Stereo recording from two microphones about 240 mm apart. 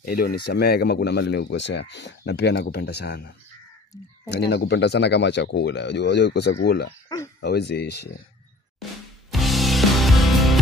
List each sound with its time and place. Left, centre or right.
0.0 s speech: left
4.3 s speech: left
7.1 s speech: centre
7.4 s speech: left
9.3 s music: centre